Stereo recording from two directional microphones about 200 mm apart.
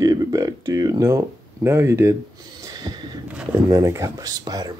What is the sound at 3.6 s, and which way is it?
Speech, 15° right (ahead or behind).